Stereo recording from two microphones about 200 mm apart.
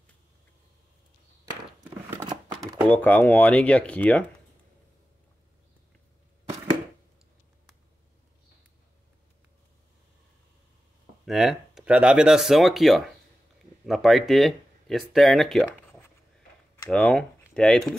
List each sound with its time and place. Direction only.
1.8 s a sound: 15° right (ahead or behind)
2.6 s speech: 10° left (ahead or behind)
11.2 s speech: centre (ahead or behind)